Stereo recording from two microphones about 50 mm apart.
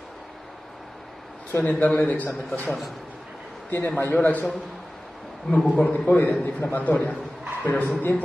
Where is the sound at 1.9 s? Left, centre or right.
Left.